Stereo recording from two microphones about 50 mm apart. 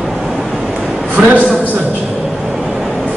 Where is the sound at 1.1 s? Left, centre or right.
Right.